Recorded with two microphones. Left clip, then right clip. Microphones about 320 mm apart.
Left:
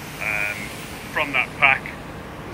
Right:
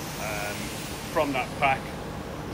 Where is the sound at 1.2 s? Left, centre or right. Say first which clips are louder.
Left 6 dB; centre.